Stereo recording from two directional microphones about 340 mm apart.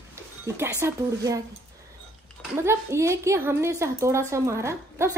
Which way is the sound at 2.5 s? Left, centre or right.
Centre.